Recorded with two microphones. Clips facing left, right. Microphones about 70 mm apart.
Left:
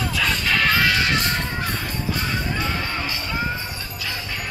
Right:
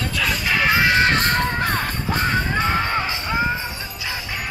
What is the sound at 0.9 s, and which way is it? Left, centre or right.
Music, right.